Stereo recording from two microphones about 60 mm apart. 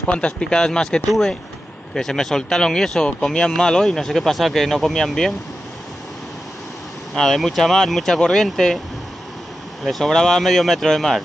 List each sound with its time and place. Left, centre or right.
0.0 s speech: centre
7.2 s speech: centre
9.8 s speech: centre